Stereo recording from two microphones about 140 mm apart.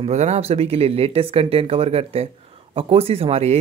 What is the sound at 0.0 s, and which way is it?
Speech, 55° right (ahead or behind).